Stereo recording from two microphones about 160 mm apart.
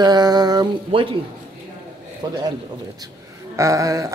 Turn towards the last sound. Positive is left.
turn(degrees=-20)  # may be behind; listen again after turning